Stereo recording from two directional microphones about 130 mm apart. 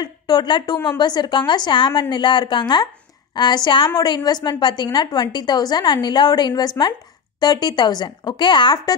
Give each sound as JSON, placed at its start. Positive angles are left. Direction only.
{"t": 0.0, "sound": "a woman's voice", "side_deg": 35}